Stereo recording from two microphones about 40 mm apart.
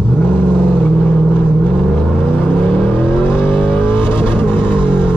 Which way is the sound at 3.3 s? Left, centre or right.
Left.